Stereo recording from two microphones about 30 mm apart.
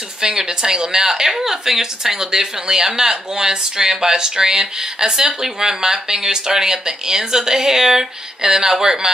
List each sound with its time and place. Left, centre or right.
0.2 s speech: right